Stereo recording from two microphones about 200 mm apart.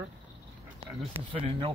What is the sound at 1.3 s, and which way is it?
Speech, 25° right (ahead or behind).